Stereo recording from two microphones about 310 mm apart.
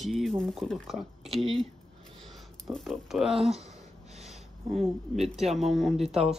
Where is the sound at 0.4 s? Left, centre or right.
Centre.